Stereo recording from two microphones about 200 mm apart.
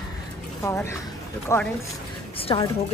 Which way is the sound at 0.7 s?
15° left (ahead or behind).